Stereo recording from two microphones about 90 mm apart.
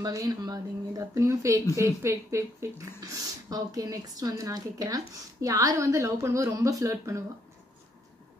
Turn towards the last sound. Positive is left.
turn(degrees=-35)  # may be behind; listen again after turning